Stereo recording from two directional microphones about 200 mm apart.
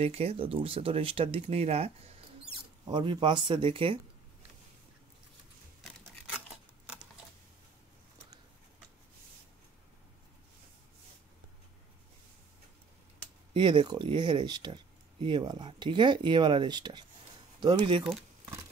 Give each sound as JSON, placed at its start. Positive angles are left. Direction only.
{"t": 0.0, "sound": "speech", "side_deg": -30}
{"t": 13.5, "sound": "speech", "side_deg": -25}